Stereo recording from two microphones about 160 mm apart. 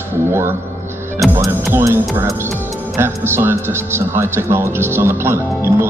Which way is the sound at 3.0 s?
15° right (ahead or behind).